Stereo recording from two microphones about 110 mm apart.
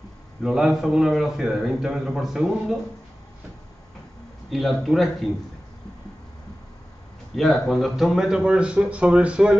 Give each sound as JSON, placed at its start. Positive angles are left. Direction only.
{"t": 0.4, "sound": "a man's voice", "side_deg": -5}
{"t": 4.5, "sound": "a man's voice", "side_deg": 0}
{"t": 7.3, "sound": "speech", "side_deg": 0}